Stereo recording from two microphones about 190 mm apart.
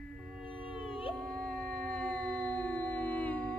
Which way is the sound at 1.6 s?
50° right (ahead or behind).